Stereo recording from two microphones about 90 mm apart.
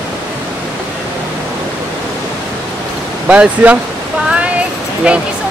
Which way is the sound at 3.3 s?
15° right (ahead or behind).